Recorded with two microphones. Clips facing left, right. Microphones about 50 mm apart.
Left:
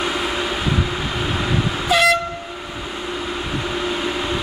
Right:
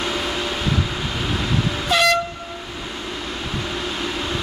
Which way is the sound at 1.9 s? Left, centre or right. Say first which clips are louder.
Left 2 dB; centre.